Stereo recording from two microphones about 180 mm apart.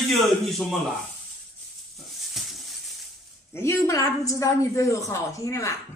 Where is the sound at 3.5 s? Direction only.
15° left (ahead or behind).